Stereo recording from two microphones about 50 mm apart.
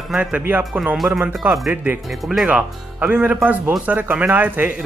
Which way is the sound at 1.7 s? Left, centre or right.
Right.